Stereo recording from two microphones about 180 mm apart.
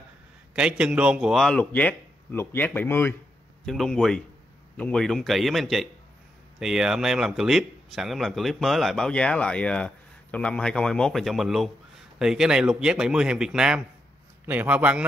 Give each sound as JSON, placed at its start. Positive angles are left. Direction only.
{"t": 0.6, "sound": "a man's voice", "side_deg": -5}